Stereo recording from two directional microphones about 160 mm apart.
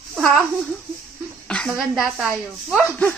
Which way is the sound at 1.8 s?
Centre (ahead or behind).